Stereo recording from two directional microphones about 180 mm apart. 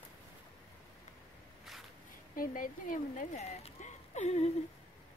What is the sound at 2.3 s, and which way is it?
Speech, 50° left (ahead or behind).